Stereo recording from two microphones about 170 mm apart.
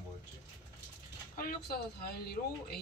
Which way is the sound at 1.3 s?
60° left (ahead or behind).